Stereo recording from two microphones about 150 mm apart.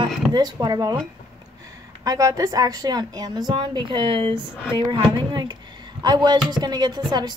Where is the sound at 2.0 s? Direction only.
25° right (ahead or behind).